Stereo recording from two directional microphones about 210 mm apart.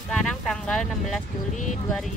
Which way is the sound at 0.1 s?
5° left (ahead or behind).